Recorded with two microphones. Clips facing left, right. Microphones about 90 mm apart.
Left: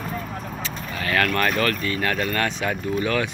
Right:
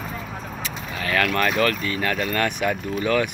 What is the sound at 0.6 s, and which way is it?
Speech, 10° right (ahead or behind).